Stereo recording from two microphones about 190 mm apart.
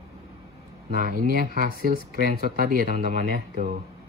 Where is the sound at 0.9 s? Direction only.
50° right (ahead or behind).